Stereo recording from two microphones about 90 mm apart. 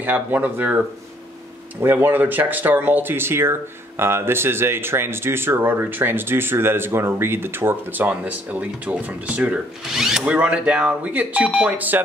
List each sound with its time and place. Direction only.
0.0 s speech: 20° right (ahead or behind)